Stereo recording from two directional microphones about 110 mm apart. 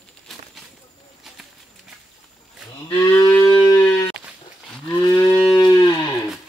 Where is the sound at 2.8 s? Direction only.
35° left (ahead or behind).